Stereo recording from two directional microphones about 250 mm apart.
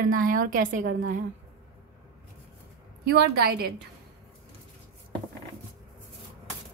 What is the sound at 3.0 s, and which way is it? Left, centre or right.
Speech, right.